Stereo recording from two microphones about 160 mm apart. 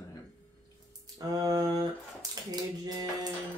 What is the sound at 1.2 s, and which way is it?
Speech, 20° right (ahead or behind).